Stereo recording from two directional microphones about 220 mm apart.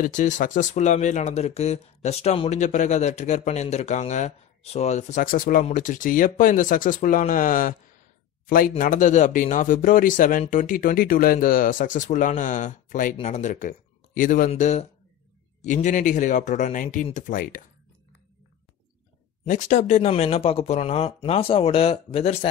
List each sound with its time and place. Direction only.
0.0 s speech: 35° left (ahead or behind)
19.4 s speech: 35° left (ahead or behind)